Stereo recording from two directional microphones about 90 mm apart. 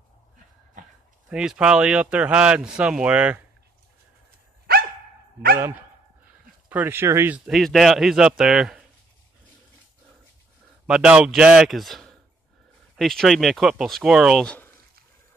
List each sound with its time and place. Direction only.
1.3 s speech: 10° right (ahead or behind)
6.7 s speech: 25° right (ahead or behind)
7.5 s speech: centre (ahead or behind)
10.9 s speech: 10° right (ahead or behind)